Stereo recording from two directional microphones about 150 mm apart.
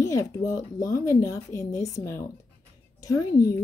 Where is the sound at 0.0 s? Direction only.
20° left (ahead or behind).